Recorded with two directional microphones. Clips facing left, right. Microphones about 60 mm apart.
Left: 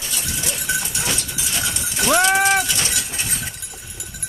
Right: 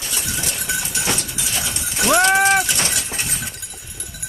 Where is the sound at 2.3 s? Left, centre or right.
Centre.